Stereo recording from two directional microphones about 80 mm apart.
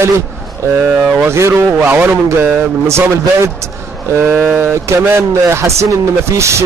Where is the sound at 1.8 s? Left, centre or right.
Centre.